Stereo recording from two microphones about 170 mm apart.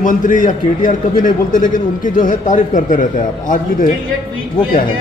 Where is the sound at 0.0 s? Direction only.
50° left (ahead or behind).